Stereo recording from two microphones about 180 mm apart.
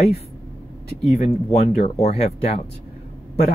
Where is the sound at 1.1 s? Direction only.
35° left (ahead or behind).